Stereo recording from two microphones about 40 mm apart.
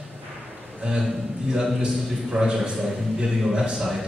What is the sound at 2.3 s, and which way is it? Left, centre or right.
A man's voice, centre.